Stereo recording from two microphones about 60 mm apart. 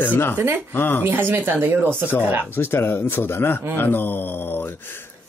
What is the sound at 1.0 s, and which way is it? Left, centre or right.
Speech, right.